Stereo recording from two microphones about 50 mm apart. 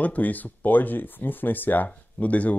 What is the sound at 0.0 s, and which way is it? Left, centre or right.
Speech, left.